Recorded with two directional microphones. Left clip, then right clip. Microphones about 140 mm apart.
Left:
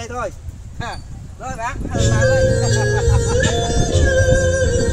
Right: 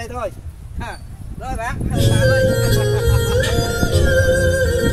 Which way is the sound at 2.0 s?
45° right (ahead or behind).